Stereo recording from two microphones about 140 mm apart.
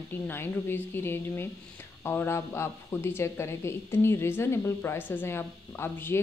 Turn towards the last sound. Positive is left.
turn(degrees=15)  # may be behind; listen again after turning